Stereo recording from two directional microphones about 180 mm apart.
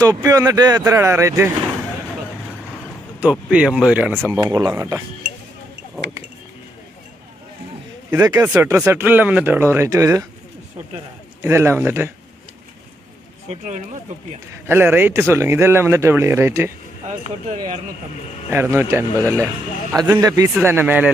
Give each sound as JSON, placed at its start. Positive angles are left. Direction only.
{"t": 0.0, "sound": "a man's voice", "side_deg": -20}
{"t": 3.2, "sound": "a man's voice", "side_deg": -5}
{"t": 8.1, "sound": "a man's voice", "side_deg": -15}
{"t": 11.4, "sound": "a man's voice", "side_deg": -15}
{"t": 14.7, "sound": "a man's voice", "side_deg": -10}
{"t": 18.5, "sound": "a man's voice", "side_deg": -15}